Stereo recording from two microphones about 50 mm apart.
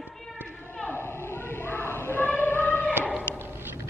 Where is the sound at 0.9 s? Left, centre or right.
Left.